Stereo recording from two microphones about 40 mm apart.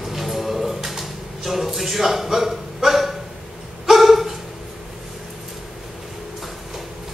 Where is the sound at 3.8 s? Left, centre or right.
Centre.